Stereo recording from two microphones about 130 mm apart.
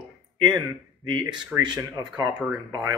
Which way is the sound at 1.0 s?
40° right (ahead or behind).